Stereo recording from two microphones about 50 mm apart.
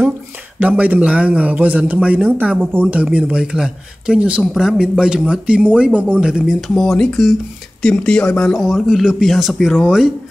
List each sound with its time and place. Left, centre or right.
0.6 s a man's voice: right
2.6 s speech: right
2.9 s a man's voice: right
6.2 s speech: centre
6.7 s speech: centre
7.9 s speech: centre
8.5 s speech: centre